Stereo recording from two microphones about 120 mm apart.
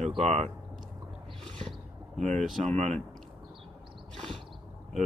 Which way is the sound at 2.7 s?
65° right (ahead or behind).